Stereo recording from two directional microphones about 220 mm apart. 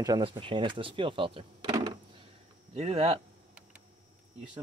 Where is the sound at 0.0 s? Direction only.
20° right (ahead or behind).